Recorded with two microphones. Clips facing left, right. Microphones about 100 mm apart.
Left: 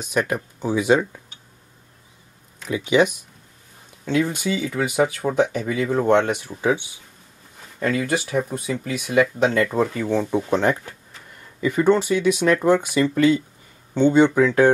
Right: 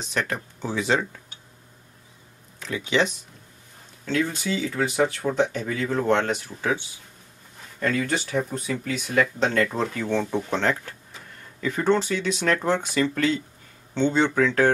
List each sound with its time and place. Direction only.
0.0 s speech: 10° left (ahead or behind)
2.6 s speech: 10° left (ahead or behind)
7.8 s speech: 5° left (ahead or behind)